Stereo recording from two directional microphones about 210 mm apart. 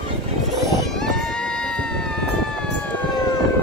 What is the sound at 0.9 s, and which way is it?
Run, centre (ahead or behind).